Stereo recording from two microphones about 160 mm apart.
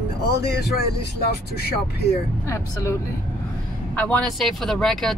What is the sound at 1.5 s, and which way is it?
Speech, 90° left.